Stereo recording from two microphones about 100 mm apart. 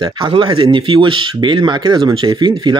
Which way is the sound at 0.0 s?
55° right (ahead or behind).